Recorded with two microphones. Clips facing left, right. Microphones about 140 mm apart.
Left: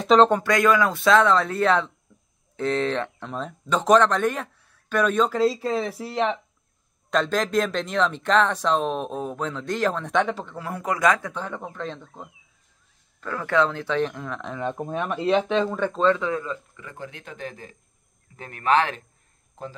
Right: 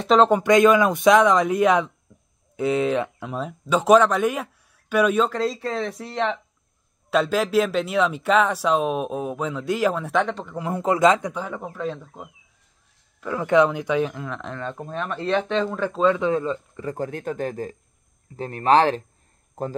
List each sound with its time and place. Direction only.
0.0 s speech: centre (ahead or behind)
0.4 s speech: 20° right (ahead or behind)
5.3 s speech: 5° left (ahead or behind)
7.1 s speech: 10° right (ahead or behind)
10.5 s a man's voice: 20° right (ahead or behind)
11.3 s speech: 5° right (ahead or behind)
13.2 s speech: 20° right (ahead or behind); by 14.6 s centre (ahead or behind)
14.6 s speech: 15° left (ahead or behind); by 16.2 s 5° right (ahead or behind)
16.2 s speech: 25° right (ahead or behind); by 17.7 s 45° right (ahead or behind)
18.3 s speech: 35° right (ahead or behind)